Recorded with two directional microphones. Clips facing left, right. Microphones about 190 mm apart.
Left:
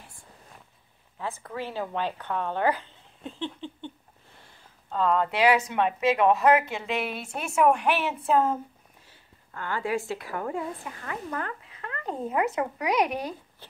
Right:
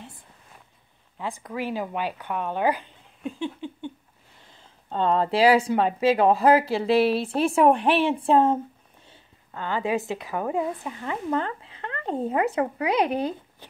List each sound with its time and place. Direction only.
1.1 s speech: 15° right (ahead or behind)
4.8 s a woman's voice: 30° right (ahead or behind)
13.6 s a sound: 15° right (ahead or behind)